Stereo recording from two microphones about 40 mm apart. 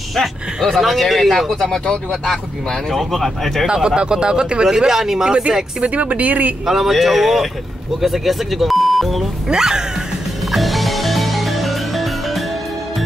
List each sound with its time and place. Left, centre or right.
0.1 s speech: centre
1.6 s speech: centre
2.9 s speech: centre
3.6 s speech: right
5.8 s speech: right
6.6 s speech: centre
9.5 s speech: centre
10.5 s music: centre